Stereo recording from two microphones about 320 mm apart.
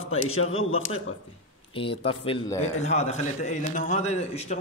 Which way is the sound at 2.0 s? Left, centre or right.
Centre.